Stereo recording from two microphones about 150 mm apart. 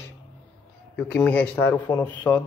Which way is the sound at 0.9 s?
10° left (ahead or behind).